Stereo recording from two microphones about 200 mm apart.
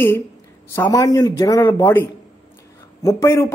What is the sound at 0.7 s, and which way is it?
A man's voice, 15° left (ahead or behind).